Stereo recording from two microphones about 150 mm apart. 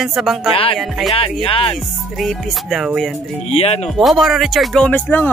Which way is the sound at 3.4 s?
45° left (ahead or behind).